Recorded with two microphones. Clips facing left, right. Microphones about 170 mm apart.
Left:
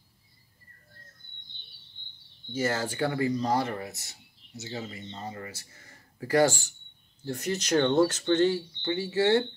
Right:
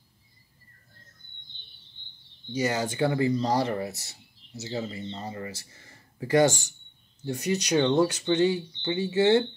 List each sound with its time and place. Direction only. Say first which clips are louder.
2.5 s speech: right 2 dB; 15° right (ahead or behind)